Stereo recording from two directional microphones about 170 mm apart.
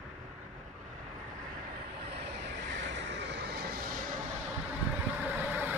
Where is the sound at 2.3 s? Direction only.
90° right; by 4.0 s 65° right (ahead or behind).